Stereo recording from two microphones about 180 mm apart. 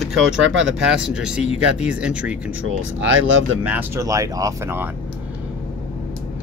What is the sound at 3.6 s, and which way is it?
Speech, 10° right (ahead or behind).